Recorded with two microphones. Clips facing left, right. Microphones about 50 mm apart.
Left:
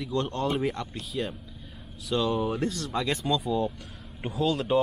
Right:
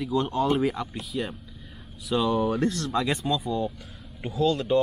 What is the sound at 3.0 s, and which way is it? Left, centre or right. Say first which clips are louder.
Speech: right 1 dB; centre.